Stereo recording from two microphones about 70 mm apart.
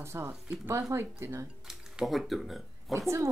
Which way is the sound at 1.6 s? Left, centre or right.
Centre.